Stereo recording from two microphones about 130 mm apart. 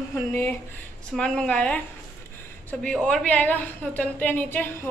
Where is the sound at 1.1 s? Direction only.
5° left (ahead or behind).